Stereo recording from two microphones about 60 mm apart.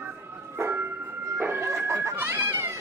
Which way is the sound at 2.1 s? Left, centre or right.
Right.